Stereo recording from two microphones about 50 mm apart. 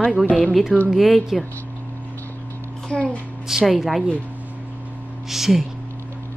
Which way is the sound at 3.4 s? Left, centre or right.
Centre.